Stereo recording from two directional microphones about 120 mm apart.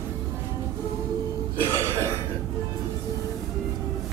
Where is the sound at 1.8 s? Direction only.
25° right (ahead or behind).